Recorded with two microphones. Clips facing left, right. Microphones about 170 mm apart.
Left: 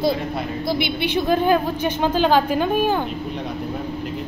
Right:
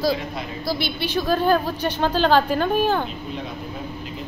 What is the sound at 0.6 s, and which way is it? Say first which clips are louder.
A woman's voice: left 2 dB; 20° left (ahead or behind).